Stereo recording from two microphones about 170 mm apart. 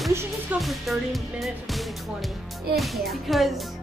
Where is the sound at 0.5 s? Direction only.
Centre (ahead or behind).